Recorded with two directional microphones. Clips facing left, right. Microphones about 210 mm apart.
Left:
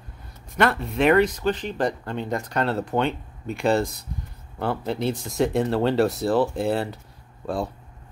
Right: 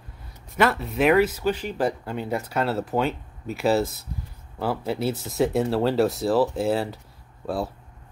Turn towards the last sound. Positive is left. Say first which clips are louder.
# even
turn(degrees=-5)  # may be behind; listen again after turning